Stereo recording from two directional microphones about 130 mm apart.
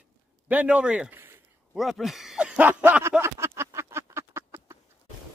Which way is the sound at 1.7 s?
Centre (ahead or behind).